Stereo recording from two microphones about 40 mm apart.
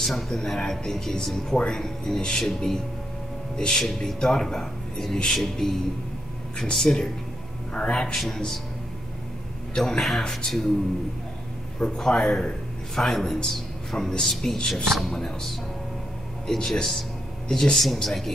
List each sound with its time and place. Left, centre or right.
0.0 s speech: centre
3.8 s speech: centre
9.8 s speech: centre
11.8 s a man's voice: centre
13.9 s speech: centre
14.2 s speech: centre
16.4 s speech: centre